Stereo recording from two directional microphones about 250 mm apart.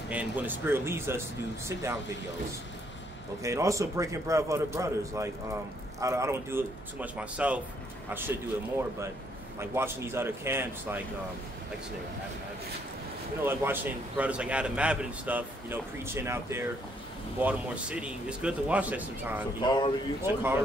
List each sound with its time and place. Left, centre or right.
0.1 s a man's voice: centre
3.4 s a man's voice: centre
9.6 s a man's voice: centre
13.4 s a man's voice: centre
19.6 s speech: centre
20.2 s a man's voice: centre